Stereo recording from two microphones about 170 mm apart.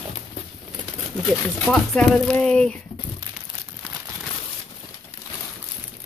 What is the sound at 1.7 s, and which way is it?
Speech, 5° left (ahead or behind).